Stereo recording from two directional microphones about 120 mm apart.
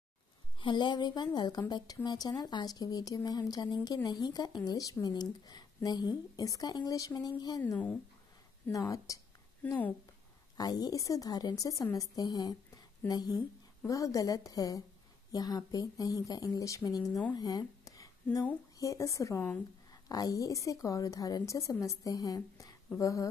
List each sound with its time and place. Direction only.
0.6 s speech: 40° left (ahead or behind)
7.6 s speech: 10° left (ahead or behind)
8.7 s a woman's voice: 30° left (ahead or behind)
9.6 s a woman's voice: 15° left (ahead or behind)
10.6 s a woman's voice: 35° left (ahead or behind)
17.3 s a sound: 35° left (ahead or behind)
18.8 s a woman's voice: 25° left (ahead or behind)